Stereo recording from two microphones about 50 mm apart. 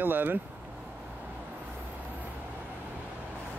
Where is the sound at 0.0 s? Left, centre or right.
Right.